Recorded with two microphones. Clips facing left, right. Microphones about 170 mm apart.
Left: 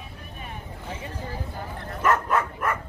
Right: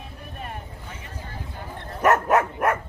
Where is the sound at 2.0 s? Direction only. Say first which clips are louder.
Right 4 dB; 65° right (ahead or behind).